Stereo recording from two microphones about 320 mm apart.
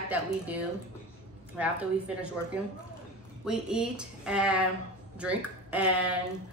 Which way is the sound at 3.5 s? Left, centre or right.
Centre.